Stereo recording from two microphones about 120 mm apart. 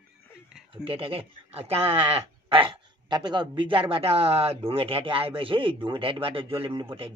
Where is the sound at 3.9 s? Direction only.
55° right (ahead or behind).